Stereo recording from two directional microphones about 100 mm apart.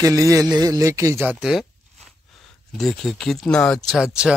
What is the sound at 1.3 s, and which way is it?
Speech, 5° right (ahead or behind).